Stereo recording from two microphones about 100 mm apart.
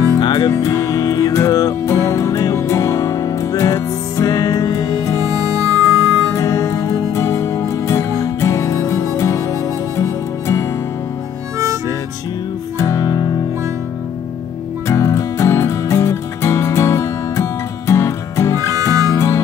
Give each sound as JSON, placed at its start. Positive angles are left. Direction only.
{"t": 0.2, "sound": "music", "side_deg": 45}
{"t": 0.5, "sound": "music", "side_deg": 30}
{"t": 5.2, "sound": "harmonica", "side_deg": -35}
{"t": 6.3, "sound": "music", "side_deg": 30}
{"t": 12.7, "sound": "music", "side_deg": 30}
{"t": 14.9, "sound": "music", "side_deg": 35}
{"t": 18.7, "sound": "music", "side_deg": -35}
{"t": 19.1, "sound": "music", "side_deg": 30}